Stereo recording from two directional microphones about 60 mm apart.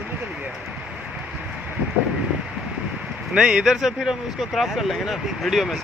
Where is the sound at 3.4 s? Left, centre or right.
Centre.